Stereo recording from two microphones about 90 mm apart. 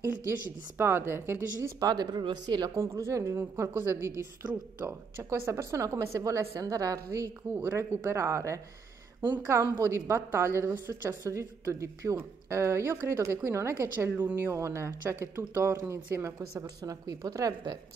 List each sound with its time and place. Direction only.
0.0 s a woman's voice: 25° right (ahead or behind)
1.8 s speech: 50° right (ahead or behind)
2.8 s speech: 30° right (ahead or behind)
5.4 s speech: 35° right (ahead or behind)
7.5 s a woman's voice: 25° right (ahead or behind)
9.8 s speech: 35° right (ahead or behind)